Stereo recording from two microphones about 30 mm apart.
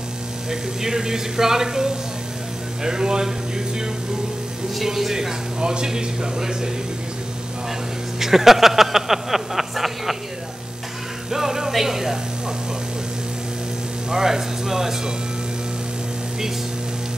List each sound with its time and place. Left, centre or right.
0.5 s speech: centre
2.8 s a sound: right
4.8 s speech: centre
5.6 s speech: right
8.2 s speech: centre
11.2 s speech: centre
14.1 s speech: centre